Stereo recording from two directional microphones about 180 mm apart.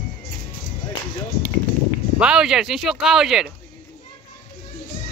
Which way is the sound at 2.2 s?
5° right (ahead or behind).